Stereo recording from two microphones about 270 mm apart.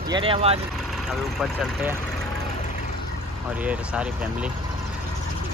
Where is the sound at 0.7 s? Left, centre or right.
Centre.